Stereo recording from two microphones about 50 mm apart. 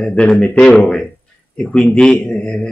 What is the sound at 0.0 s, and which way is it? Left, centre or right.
Speech, left.